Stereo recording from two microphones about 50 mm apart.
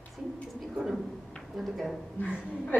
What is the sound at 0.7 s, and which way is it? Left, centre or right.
A woman's voice, centre.